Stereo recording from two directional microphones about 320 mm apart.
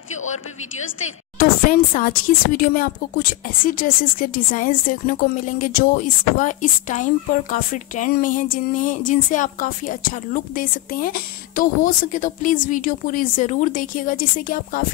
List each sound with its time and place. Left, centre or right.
1.4 s speech: left